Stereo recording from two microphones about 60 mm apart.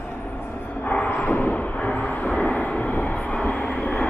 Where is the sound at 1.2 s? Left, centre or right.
Left.